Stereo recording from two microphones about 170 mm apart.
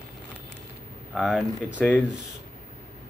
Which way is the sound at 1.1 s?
Centre (ahead or behind).